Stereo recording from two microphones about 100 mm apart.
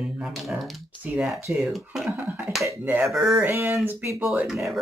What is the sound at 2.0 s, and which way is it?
Finger snapping, 15° right (ahead or behind).